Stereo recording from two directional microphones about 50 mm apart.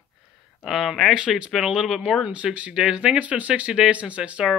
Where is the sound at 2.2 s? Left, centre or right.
Right.